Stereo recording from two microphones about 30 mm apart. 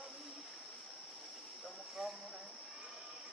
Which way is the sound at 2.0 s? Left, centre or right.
Centre.